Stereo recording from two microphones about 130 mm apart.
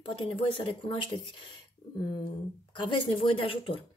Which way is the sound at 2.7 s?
40° left (ahead or behind).